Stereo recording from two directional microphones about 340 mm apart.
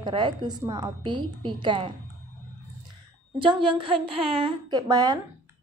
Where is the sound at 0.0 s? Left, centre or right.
Centre.